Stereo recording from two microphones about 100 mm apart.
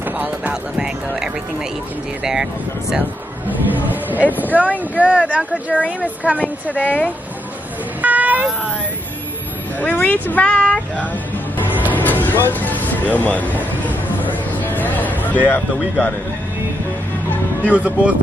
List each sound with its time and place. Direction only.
0.0 s speech: 15° right (ahead or behind)
3.4 s speech: 20° right (ahead or behind)
5.7 s speech: 10° left (ahead or behind)
6.0 s speech: 15° right (ahead or behind)
6.4 s speech: 15° left (ahead or behind)
8.0 s vehicle: 15° right (ahead or behind)
9.8 s speech: 15° left (ahead or behind)
11.9 s music: 20° left (ahead or behind)
17.7 s speech: 15° right (ahead or behind)